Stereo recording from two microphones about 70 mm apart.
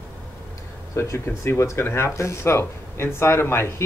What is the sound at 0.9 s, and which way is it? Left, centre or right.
Speech, left.